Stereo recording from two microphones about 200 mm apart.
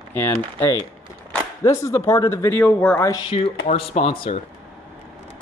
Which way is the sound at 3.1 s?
25° left (ahead or behind).